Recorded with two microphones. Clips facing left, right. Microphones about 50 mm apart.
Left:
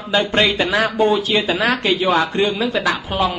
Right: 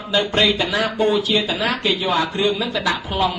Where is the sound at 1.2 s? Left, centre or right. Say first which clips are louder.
Left 3 dB; left.